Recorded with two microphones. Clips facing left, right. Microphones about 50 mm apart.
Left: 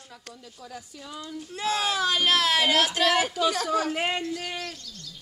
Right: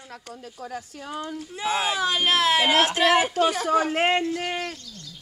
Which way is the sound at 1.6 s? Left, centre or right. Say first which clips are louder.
Right 1 dB; right.